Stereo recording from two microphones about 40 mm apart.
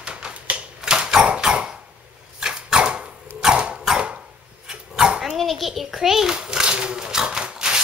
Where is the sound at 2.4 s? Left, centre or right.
Right.